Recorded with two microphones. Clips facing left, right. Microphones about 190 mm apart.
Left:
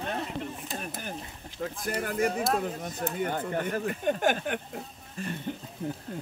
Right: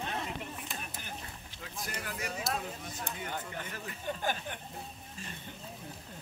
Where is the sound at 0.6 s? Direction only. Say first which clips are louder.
Left 7 dB; 45° left (ahead or behind); by 4.5 s 75° left (ahead or behind).